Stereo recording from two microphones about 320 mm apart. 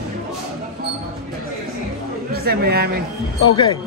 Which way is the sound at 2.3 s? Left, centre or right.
Right.